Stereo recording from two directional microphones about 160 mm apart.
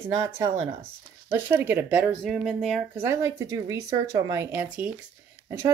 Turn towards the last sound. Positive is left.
turn(degrees=-20)  # may be behind; listen again after turning